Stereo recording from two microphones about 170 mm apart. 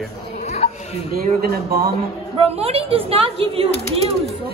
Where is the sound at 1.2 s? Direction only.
60° right (ahead or behind).